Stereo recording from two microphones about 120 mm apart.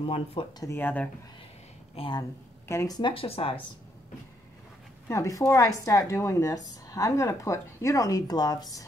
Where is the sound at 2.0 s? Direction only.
40° left (ahead or behind).